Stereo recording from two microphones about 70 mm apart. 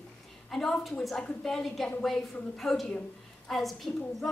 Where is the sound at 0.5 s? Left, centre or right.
Centre.